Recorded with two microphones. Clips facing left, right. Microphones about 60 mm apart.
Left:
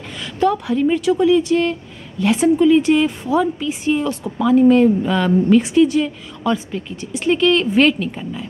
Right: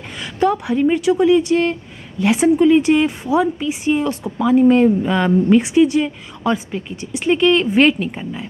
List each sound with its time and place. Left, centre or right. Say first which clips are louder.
0.2 s a woman's voice: even; centre
1.6 s a sound: right 1 dB; right
2.3 s speech: right 1 dB; centre
2.6 s speech: even; centre
7.1 s speech: right 1 dB; centre